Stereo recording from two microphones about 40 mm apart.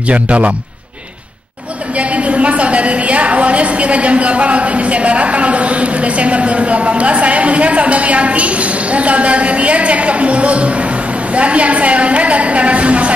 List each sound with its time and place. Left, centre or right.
0.1 s a woman's voice: right
2.0 s a woman's voice: right